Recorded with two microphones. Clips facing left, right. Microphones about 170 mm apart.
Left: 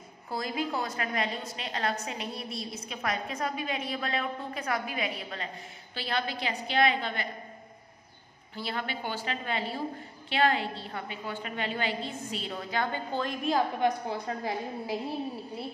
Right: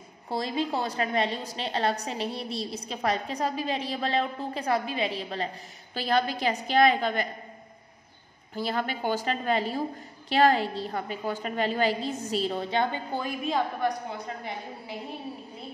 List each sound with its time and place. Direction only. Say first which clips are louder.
0.3 s a woman's voice: right 3 dB; 30° right (ahead or behind)
8.5 s a woman's voice: right 5 dB; 45° right (ahead or behind)
12.9 s a woman's voice: even; 10° right (ahead or behind)
13.7 s a woman's voice: left 1 dB; 30° left (ahead or behind)